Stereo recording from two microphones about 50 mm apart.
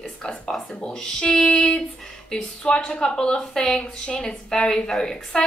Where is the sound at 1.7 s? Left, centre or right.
Centre.